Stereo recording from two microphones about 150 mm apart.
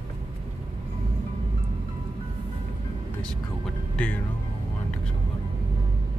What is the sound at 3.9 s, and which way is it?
Music, 10° left (ahead or behind).